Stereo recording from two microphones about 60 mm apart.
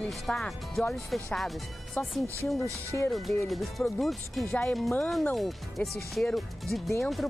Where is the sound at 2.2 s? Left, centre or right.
Right.